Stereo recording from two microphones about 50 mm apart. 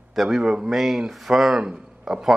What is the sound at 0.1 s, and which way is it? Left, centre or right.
A man's voice, centre.